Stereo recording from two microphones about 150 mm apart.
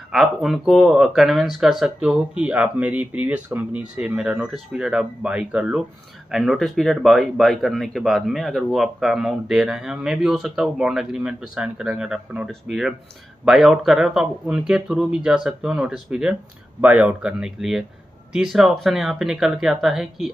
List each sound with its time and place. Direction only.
0.1 s speech: centre (ahead or behind)